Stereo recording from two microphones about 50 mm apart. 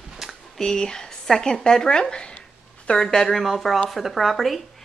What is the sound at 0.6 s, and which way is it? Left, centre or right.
Speech, centre.